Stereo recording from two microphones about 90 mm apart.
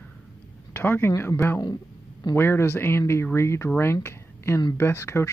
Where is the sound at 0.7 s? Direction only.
25° left (ahead or behind).